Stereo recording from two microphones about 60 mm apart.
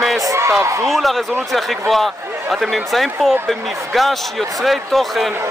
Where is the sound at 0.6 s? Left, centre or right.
Right.